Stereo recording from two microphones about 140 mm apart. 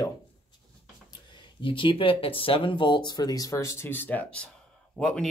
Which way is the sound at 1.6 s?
40° left (ahead or behind).